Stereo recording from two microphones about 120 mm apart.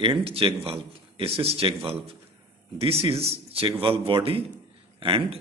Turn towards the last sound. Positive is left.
turn(degrees=-45)  # may be behind; listen again after turning